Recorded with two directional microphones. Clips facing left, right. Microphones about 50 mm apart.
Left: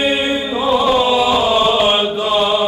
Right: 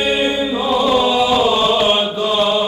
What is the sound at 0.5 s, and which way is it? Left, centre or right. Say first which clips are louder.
Chant: left 3 dB; centre.